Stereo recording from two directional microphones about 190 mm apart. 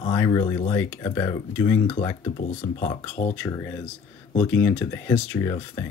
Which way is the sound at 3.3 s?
10° left (ahead or behind).